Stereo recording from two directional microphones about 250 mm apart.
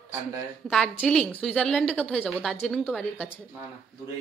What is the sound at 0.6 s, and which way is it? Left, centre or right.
A woman's voice, centre.